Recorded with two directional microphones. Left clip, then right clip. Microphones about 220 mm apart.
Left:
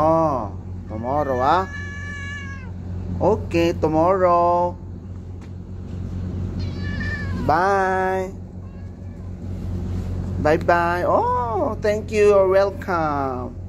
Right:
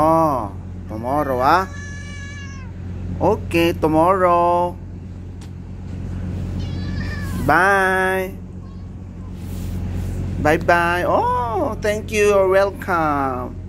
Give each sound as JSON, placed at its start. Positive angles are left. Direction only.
{"t": 0.0, "sound": "a sound", "side_deg": 5}
{"t": 1.0, "sound": "vehicle", "side_deg": 0}
{"t": 3.2, "sound": "speech", "side_deg": 5}
{"t": 6.8, "sound": "cat", "side_deg": 15}
{"t": 7.4, "sound": "speech", "side_deg": 0}
{"t": 10.7, "sound": "speech", "side_deg": 5}